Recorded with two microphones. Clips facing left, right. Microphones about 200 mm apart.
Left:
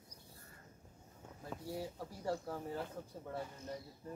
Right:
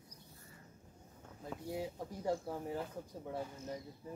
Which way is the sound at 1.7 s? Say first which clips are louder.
Right 3 dB; 15° right (ahead or behind).